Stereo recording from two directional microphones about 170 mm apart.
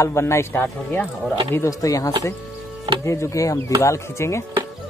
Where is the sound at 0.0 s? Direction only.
15° left (ahead or behind).